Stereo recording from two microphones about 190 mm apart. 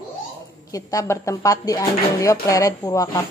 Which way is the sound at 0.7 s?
15° left (ahead or behind).